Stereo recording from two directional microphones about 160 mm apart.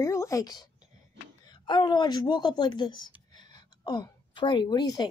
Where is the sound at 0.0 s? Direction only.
20° left (ahead or behind).